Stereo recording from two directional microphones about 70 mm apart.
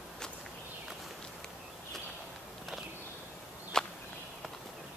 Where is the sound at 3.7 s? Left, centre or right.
Centre.